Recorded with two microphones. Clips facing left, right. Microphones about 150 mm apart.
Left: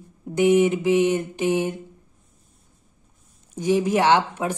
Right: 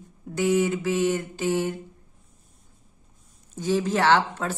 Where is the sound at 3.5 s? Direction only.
15° left (ahead or behind).